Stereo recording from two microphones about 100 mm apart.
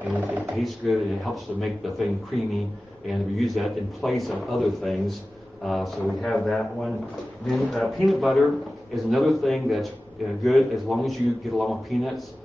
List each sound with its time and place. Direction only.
0.0 s speech: 15° right (ahead or behind)
0.6 s a man's voice: centre (ahead or behind)